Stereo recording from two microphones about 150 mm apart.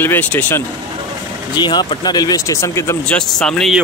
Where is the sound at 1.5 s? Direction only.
30° left (ahead or behind).